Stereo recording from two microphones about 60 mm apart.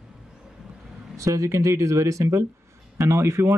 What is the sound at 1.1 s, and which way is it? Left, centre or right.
Speech, right.